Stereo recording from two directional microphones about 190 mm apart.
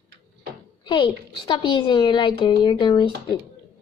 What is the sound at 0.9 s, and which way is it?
A woman's voice, 25° left (ahead or behind).